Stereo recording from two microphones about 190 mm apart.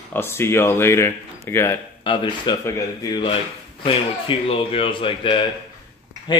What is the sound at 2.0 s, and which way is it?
A man's voice, 25° left (ahead or behind).